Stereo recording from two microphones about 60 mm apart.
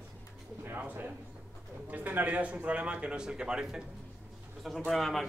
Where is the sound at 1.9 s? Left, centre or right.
Right; by 3.9 s centre.